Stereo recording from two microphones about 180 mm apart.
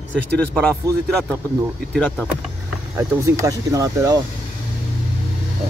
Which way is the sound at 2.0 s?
5° left (ahead or behind).